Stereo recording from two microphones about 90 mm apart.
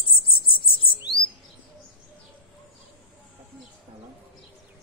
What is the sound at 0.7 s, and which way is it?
Bird, 75° left (ahead or behind).